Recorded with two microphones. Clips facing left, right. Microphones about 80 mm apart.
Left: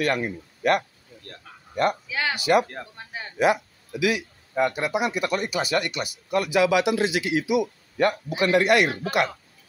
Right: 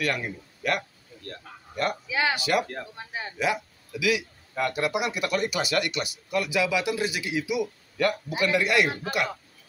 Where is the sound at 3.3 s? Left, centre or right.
Left.